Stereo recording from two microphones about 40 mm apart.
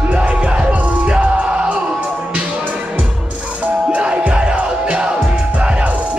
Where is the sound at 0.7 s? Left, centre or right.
Right.